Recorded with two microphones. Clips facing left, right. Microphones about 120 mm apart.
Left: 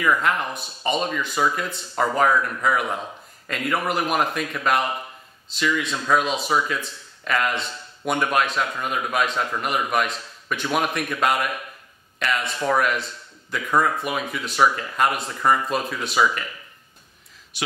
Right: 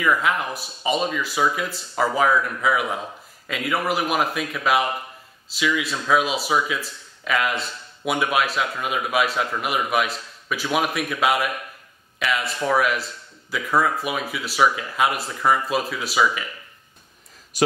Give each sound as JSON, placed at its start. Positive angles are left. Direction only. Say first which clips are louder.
{"t": 0.0, "sound": "speech", "louder": "even", "side_deg": 0}
{"t": 17.5, "sound": "speech", "louder": "right 10 dB", "side_deg": -40}